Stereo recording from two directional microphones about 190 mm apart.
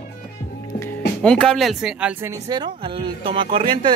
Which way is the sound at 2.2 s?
20° right (ahead or behind).